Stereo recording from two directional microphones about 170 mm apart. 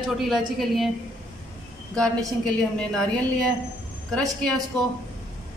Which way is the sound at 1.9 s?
5° left (ahead or behind).